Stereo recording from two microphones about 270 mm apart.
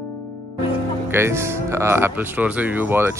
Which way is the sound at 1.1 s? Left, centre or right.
Centre.